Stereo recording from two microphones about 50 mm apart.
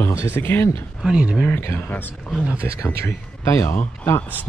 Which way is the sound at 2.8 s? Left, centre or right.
Left.